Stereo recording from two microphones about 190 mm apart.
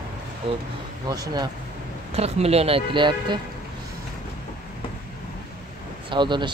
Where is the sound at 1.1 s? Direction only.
20° right (ahead or behind).